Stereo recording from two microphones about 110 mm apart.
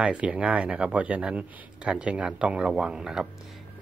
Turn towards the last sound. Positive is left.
turn(degrees=-5)  # may be behind; listen again after turning